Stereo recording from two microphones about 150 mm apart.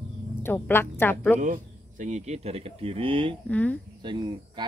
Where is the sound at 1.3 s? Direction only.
60° right (ahead or behind); by 3.3 s 35° right (ahead or behind).